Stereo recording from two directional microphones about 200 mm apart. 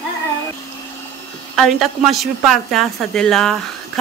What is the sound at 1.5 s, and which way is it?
A woman's voice, centre (ahead or behind).